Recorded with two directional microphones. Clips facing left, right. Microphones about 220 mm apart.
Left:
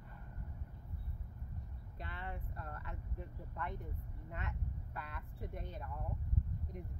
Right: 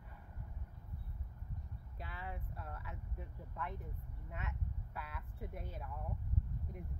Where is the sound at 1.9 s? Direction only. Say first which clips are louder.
Left 1 dB; 5° right (ahead or behind).